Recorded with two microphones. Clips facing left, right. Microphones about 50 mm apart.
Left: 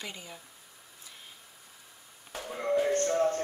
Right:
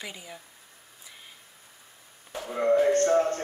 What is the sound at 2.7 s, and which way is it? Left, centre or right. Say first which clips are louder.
Music: right 5 dB; right.